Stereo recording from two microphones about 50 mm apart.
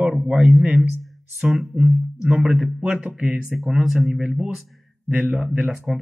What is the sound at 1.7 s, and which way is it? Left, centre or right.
Speech, centre.